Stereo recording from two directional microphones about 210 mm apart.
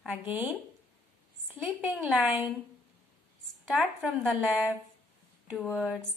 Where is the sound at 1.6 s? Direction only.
5° right (ahead or behind).